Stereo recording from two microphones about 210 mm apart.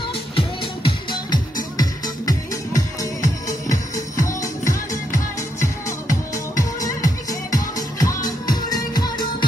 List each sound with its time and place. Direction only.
0.4 s music: 20° left (ahead or behind)